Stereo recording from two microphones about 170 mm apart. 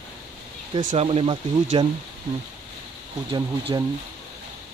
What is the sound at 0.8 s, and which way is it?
Speech, 40° right (ahead or behind).